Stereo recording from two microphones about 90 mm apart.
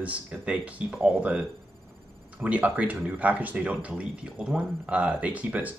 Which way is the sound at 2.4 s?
15° right (ahead or behind).